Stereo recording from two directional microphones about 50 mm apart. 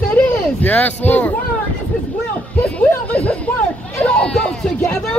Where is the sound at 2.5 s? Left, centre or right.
Left.